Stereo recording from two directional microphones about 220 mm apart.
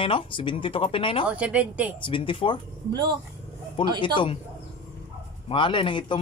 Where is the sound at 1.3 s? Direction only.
5° right (ahead or behind).